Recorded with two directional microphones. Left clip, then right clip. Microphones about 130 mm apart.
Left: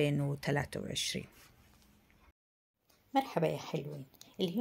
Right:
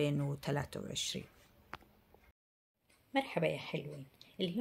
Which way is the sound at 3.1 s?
40° left (ahead or behind).